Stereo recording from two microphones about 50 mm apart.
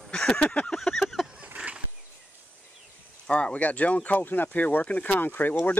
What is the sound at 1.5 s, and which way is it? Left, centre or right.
Wild animals, right.